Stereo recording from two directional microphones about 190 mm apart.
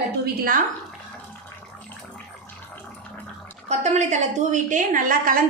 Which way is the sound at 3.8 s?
35° right (ahead or behind).